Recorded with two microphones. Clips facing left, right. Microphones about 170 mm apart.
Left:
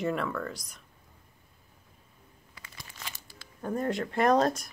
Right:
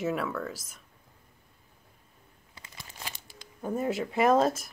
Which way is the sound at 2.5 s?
25° right (ahead or behind).